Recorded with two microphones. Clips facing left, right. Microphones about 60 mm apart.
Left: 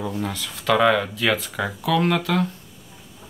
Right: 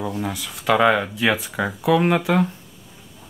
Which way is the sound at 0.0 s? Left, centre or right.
Centre.